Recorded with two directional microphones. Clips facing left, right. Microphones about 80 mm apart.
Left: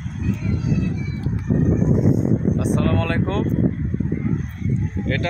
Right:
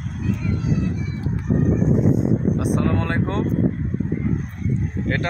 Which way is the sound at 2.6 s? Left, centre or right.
Centre.